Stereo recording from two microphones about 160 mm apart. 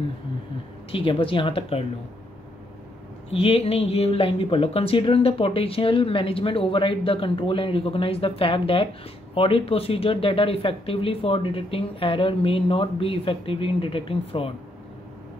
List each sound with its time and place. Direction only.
0.9 s speech: 35° left (ahead or behind)
3.3 s speech: 35° left (ahead or behind)